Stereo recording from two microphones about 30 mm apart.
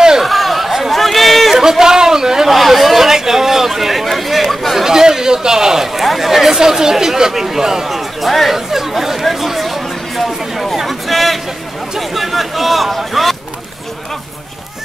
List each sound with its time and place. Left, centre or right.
0.2 s chatter: centre
1.6 s a sound: centre
2.5 s chatter: centre
3.1 s chatter: centre
4.8 s a sound: centre
5.9 s speech: centre
7.9 s speech: centre
8.5 s chatter: centre
10.9 s a sound: centre